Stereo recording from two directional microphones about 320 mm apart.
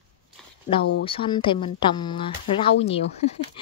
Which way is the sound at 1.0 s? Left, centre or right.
Centre.